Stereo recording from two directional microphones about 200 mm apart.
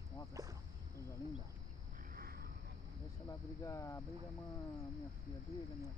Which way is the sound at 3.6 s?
15° left (ahead or behind).